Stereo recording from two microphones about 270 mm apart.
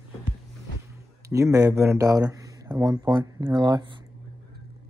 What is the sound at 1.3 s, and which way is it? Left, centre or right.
Speech, centre.